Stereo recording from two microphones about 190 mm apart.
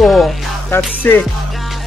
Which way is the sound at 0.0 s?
Centre (ahead or behind).